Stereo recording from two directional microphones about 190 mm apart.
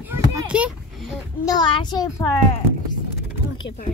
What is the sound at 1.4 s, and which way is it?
Speech, 25° left (ahead or behind).